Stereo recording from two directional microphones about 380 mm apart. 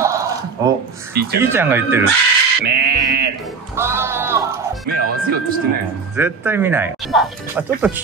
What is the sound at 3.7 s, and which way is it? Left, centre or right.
Music, centre.